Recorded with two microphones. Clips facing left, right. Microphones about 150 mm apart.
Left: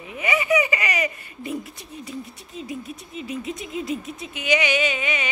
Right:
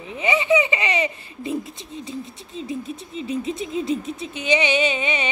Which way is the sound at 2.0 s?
25° right (ahead or behind).